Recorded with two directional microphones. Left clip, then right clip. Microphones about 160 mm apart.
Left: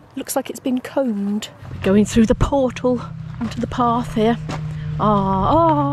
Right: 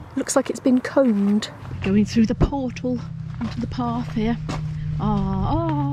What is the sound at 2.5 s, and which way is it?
Speech, 50° right (ahead or behind).